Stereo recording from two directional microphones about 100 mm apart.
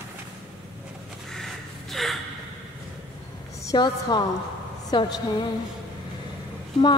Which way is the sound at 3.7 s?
50° left (ahead or behind).